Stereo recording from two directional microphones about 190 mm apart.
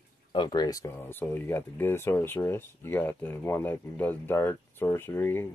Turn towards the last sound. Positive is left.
turn(degrees=10)  # may be behind; listen again after turning